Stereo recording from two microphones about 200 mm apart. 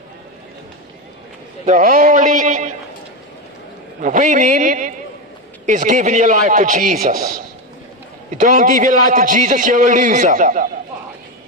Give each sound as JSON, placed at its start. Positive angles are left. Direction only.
{"t": 1.7, "sound": "a man's voice", "side_deg": -45}
{"t": 4.0, "sound": "a man's voice", "side_deg": -40}